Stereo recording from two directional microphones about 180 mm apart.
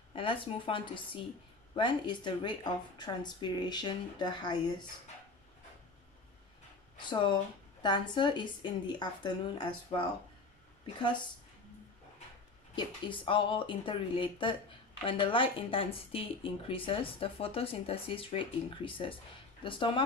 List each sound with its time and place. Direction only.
0.1 s a woman's voice: 30° left (ahead or behind)
7.0 s a woman's voice: 25° left (ahead or behind)
12.7 s a woman's voice: 25° left (ahead or behind)